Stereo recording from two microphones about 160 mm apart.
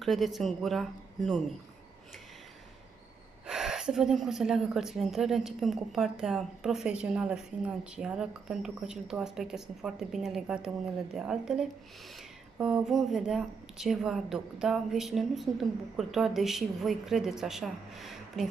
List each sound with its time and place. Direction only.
0.0 s speech: centre (ahead or behind)
3.4 s speech: 5° right (ahead or behind)